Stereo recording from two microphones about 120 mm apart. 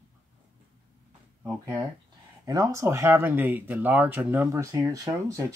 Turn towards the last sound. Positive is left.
turn(degrees=-25)  # may be behind; listen again after turning